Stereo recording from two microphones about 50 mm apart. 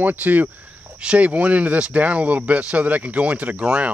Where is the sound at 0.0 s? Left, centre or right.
Right.